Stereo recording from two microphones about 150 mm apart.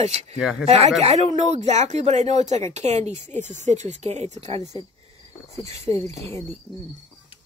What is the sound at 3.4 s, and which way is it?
Speech, 55° right (ahead or behind).